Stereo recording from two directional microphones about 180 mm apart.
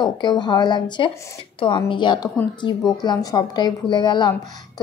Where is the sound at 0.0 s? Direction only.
25° left (ahead or behind).